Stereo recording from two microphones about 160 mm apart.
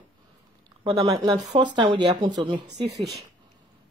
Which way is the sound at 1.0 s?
25° right (ahead or behind).